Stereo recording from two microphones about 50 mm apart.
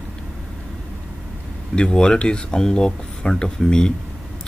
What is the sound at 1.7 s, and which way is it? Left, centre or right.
Speech, centre.